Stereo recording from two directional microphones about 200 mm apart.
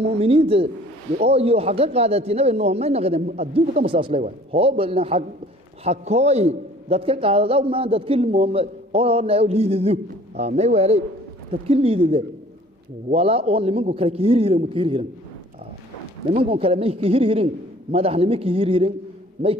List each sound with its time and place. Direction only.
0.0 s a man's voice: 30° right (ahead or behind)
3.2 s a man's voice: 40° right (ahead or behind)
3.5 s a man's voice: 25° right (ahead or behind)
16.3 s a man's voice: 30° right (ahead or behind)